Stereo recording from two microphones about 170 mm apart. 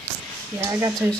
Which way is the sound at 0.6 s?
20° right (ahead or behind).